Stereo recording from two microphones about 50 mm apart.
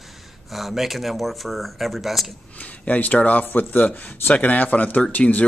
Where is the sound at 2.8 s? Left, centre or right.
Left.